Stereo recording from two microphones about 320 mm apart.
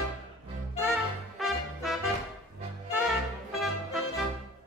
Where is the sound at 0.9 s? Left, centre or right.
Centre.